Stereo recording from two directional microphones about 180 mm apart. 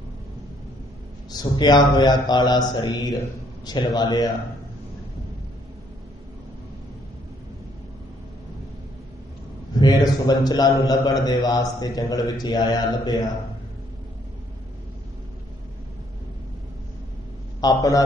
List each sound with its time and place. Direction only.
1.3 s a man's voice: 20° left (ahead or behind)
9.8 s a man's voice: 20° left (ahead or behind)
17.6 s a man's voice: 20° left (ahead or behind)